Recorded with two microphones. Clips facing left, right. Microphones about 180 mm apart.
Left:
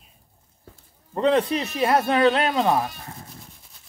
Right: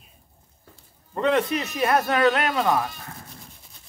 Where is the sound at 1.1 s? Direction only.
30° left (ahead or behind).